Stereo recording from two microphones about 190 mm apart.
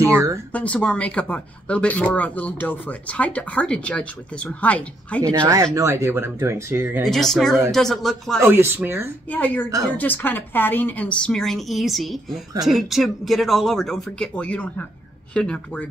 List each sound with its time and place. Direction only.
0.0 s speech: 15° right (ahead or behind)
0.5 s speech: 5° left (ahead or behind)
5.8 s speech: 15° right (ahead or behind)
7.1 s a woman's voice: centre (ahead or behind)
8.5 s speech: 10° right (ahead or behind)
9.3 s a woman's voice: 10° left (ahead or behind)